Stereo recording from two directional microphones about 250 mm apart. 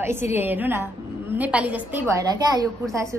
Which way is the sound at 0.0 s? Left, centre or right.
Centre.